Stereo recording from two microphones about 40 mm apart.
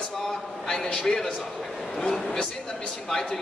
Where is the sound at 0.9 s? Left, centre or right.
Centre.